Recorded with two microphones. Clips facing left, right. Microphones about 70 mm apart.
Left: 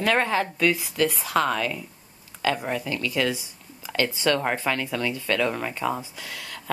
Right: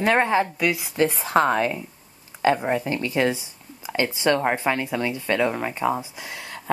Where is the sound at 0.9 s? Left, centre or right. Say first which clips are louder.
Right 3 dB; right.